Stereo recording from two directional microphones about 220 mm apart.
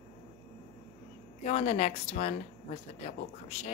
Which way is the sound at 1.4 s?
30° left (ahead or behind).